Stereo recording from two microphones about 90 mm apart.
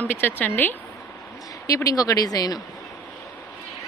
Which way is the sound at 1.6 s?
40° left (ahead or behind).